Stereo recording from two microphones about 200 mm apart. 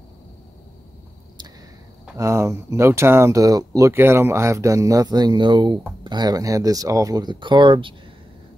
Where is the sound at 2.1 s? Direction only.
15° right (ahead or behind).